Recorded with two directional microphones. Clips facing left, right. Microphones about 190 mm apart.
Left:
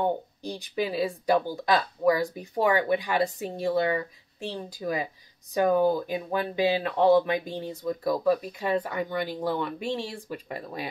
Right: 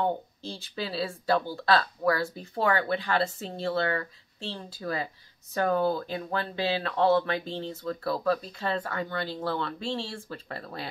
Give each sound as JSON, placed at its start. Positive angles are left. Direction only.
{"t": 0.0, "sound": "speech", "side_deg": 15}